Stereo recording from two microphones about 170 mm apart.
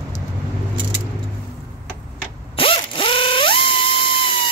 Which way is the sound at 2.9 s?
30° left (ahead or behind).